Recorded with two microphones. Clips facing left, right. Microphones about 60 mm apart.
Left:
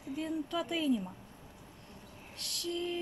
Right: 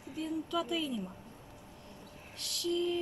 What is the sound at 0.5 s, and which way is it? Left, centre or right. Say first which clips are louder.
Speech: right 1 dB; left.